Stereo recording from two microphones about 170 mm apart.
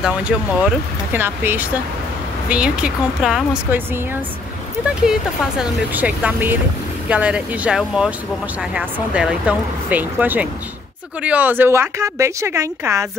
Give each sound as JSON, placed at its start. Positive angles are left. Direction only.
{"t": 0.0, "sound": "speech", "side_deg": -5}